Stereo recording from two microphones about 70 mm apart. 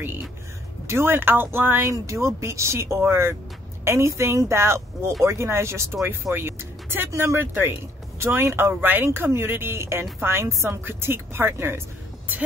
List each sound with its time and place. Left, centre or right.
0.8 s a woman's voice: right
1.9 s a woman's voice: right
7.1 s a woman's voice: right